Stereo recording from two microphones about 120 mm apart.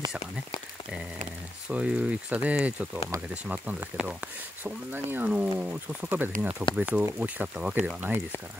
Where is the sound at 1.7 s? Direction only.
10° right (ahead or behind).